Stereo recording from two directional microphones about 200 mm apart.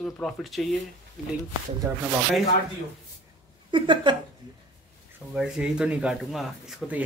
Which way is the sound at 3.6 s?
25° right (ahead or behind).